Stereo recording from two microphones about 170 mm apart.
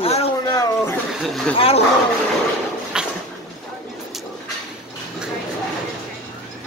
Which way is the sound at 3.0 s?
5° right (ahead or behind).